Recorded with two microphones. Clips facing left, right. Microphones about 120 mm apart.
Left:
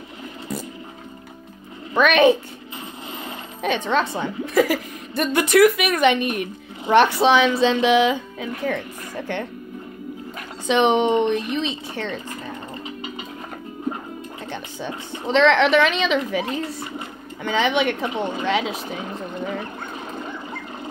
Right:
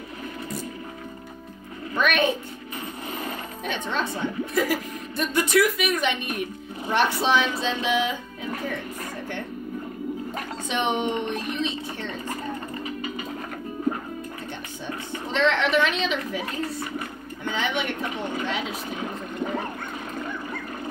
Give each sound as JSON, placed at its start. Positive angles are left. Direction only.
{"t": 2.0, "sound": "speech", "side_deg": 90}
{"t": 3.6, "sound": "a woman's voice", "side_deg": 85}
{"t": 10.7, "sound": "speech", "side_deg": 90}
{"t": 14.5, "sound": "a woman's voice", "side_deg": 90}
{"t": 17.5, "sound": "speech", "side_deg": 90}